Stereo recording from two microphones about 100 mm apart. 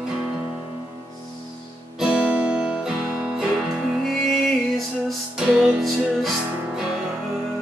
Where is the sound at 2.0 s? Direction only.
10° right (ahead or behind).